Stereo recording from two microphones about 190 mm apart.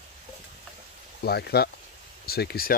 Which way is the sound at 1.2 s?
55° left (ahead or behind).